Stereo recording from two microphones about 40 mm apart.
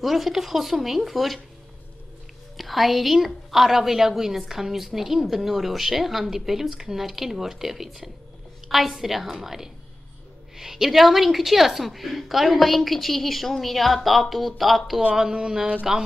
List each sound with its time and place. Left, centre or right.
0.0 s a woman's voice: centre
2.5 s a woman's voice: centre
15.3 s speech: centre